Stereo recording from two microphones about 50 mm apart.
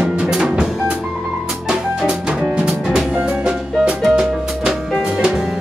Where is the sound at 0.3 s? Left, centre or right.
Centre.